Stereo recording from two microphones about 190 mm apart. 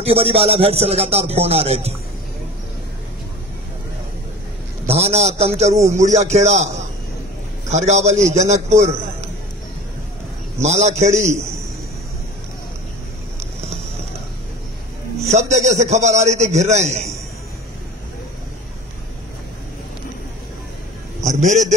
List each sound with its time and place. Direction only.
0.0 s speech: 30° right (ahead or behind)
4.9 s speech: 35° right (ahead or behind)
7.7 s speech: 35° right (ahead or behind)
10.6 s speech: 35° right (ahead or behind)
15.5 s speech: 35° right (ahead or behind)
21.2 s a man's voice: 40° right (ahead or behind)